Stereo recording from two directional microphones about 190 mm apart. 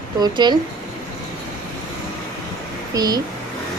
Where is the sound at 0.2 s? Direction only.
25° right (ahead or behind).